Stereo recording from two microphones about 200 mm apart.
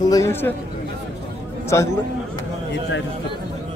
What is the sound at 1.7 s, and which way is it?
Speech, 15° left (ahead or behind).